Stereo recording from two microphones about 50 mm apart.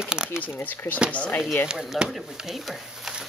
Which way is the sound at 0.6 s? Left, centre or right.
Left.